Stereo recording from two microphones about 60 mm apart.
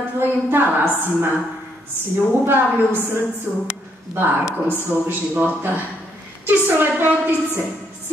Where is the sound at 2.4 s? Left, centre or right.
Right.